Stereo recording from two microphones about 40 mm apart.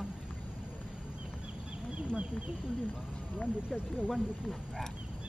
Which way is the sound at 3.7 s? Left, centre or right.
Left.